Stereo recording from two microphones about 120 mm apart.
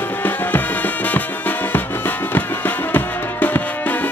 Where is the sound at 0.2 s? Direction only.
15° left (ahead or behind).